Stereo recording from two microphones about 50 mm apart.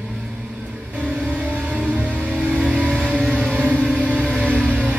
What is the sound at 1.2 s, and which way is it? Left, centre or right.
Vehicle, right.